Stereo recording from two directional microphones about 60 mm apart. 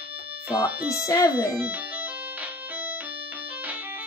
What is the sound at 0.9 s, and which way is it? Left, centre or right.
Speech, left.